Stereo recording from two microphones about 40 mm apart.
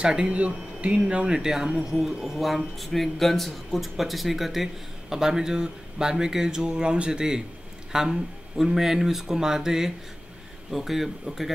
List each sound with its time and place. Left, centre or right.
0.0 s speech: right; by 11.5 s centre